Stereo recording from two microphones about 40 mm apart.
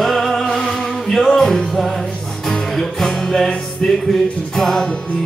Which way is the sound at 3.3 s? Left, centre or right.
Centre.